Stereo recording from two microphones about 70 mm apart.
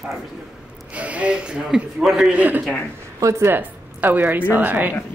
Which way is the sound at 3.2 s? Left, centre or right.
Right.